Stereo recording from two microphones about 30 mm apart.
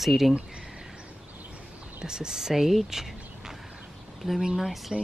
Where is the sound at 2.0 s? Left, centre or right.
Right.